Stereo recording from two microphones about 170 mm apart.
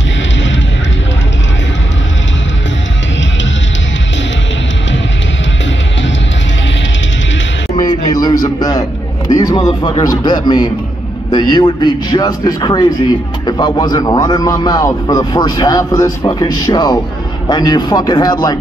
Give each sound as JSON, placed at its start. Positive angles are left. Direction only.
{"t": 7.7, "sound": "a sound", "side_deg": 25}
{"t": 9.3, "sound": "music", "side_deg": 20}
{"t": 10.2, "sound": "a man's voice", "side_deg": 25}